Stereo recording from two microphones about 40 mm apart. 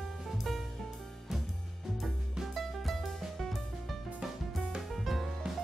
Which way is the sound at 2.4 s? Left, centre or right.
Centre.